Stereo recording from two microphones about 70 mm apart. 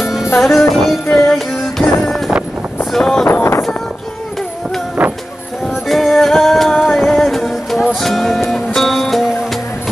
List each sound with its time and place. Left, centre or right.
0.4 s music: centre
2.9 s wind noise: centre
3.3 s wind noise: left
5.0 s music: centre
5.7 s music: centre